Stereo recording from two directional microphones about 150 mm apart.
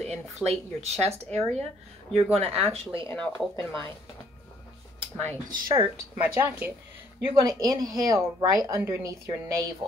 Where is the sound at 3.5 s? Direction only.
15° left (ahead or behind).